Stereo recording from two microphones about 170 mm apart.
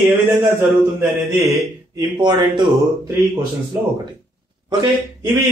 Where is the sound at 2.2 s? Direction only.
25° right (ahead or behind).